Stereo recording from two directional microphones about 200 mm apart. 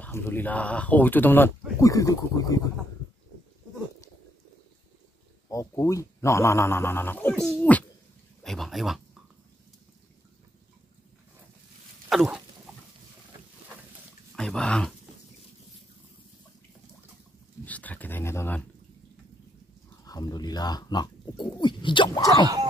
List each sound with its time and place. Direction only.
0.0 s speech: 10° left (ahead or behind)
5.5 s speech: 15° left (ahead or behind); by 9.0 s centre (ahead or behind)
12.1 s dog: centre (ahead or behind)
14.3 s speech: 5° left (ahead or behind)
17.6 s speech: 10° left (ahead or behind)
20.1 s speech: 20° left (ahead or behind)